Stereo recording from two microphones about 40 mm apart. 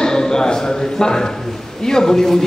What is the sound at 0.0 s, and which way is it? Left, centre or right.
A man's voice, centre.